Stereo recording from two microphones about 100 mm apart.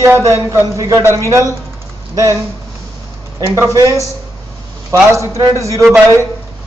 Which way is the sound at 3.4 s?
30° right (ahead or behind).